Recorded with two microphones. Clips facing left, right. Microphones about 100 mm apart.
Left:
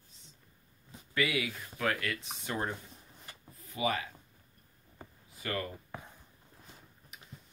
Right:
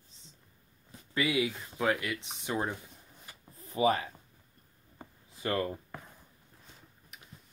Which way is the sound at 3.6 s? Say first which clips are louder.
Right 6 dB; 35° right (ahead or behind).